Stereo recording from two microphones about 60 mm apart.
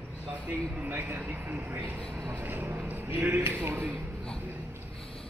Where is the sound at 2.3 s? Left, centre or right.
Right.